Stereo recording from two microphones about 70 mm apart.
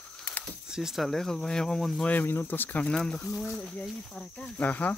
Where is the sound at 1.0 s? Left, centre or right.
Centre.